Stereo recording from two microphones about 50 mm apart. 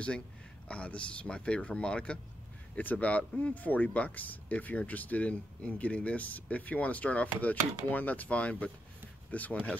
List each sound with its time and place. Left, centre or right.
0.7 s speech: left